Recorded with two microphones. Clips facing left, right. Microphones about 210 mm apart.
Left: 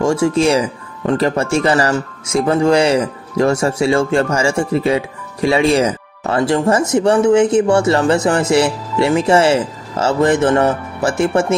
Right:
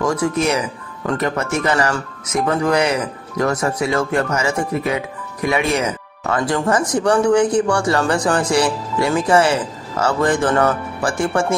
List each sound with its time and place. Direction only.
0.0 s speech: 25° left (ahead or behind)